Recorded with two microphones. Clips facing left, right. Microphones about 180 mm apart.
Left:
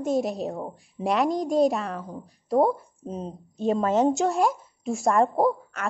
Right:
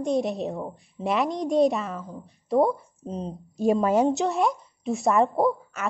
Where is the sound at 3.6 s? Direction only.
10° right (ahead or behind).